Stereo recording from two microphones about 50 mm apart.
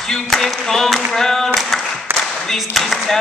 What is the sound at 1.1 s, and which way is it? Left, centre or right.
Clapping, centre.